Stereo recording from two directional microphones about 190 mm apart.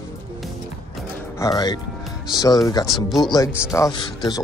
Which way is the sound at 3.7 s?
20° left (ahead or behind).